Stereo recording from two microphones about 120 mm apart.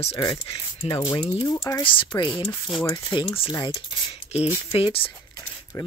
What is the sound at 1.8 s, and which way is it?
Speech, 45° left (ahead or behind).